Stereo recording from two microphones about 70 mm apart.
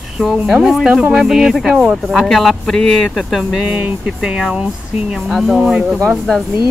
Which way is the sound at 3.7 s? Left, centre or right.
Right.